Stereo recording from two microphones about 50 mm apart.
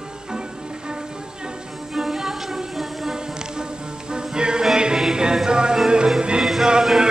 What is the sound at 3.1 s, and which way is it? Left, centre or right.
Music, centre.